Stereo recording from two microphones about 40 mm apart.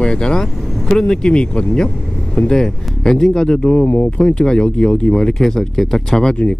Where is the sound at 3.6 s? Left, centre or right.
Left.